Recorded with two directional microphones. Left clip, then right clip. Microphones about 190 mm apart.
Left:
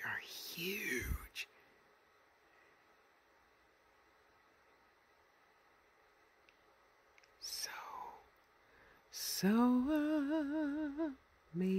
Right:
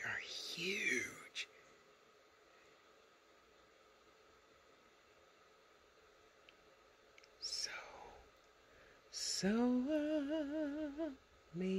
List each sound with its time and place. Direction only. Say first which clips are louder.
0.0 s whispering: even; 25° left (ahead or behind)
7.2 s whispering: right 1 dB; 30° left (ahead or behind)
9.1 s a sound: left 2 dB; 30° left (ahead or behind)